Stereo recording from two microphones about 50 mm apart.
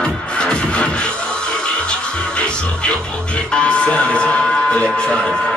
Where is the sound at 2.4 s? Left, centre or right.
Left.